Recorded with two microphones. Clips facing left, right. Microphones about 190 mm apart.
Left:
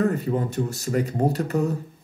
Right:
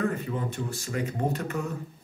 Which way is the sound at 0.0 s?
40° left (ahead or behind).